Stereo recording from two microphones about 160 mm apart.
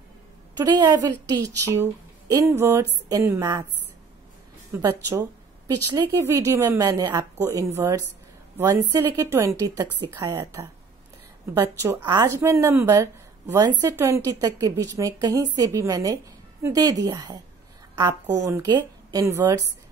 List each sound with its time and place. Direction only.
0.6 s a woman's voice: 25° right (ahead or behind)
4.7 s a woman's voice: 20° right (ahead or behind)